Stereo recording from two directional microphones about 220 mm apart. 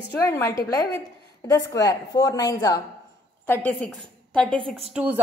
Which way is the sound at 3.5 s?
5° left (ahead or behind).